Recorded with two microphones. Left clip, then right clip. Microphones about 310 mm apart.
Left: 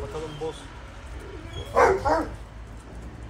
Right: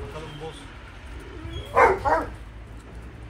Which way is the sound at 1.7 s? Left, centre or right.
Right.